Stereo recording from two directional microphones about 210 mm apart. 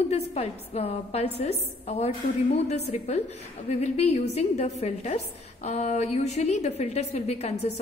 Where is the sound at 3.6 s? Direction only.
30° left (ahead or behind).